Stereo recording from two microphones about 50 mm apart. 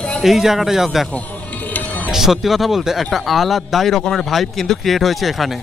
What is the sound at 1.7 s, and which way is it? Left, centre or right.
Music, left.